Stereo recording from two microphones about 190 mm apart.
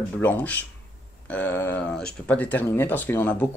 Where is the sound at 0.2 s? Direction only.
10° left (ahead or behind).